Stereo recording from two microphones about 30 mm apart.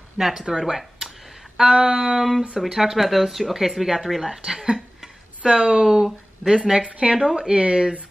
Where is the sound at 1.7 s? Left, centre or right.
Right.